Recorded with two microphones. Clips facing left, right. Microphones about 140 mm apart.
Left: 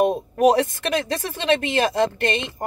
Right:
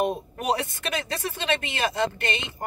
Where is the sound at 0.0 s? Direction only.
40° left (ahead or behind).